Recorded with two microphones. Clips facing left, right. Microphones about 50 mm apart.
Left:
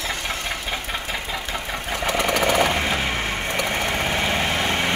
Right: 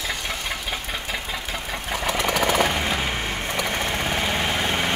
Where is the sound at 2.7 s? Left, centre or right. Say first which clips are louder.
Left 2 dB; centre.